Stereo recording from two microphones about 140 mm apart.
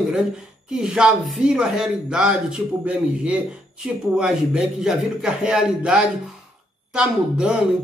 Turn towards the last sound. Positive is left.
turn(degrees=-5)  # may be behind; listen again after turning